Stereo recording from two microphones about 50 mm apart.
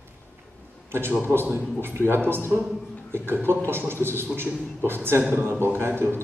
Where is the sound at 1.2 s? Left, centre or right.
Right.